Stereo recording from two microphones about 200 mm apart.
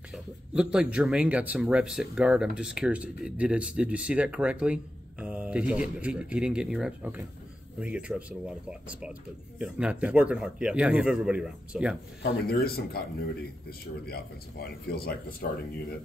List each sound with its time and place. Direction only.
0.1 s speech: 5° right (ahead or behind)
12.2 s speech: 50° left (ahead or behind)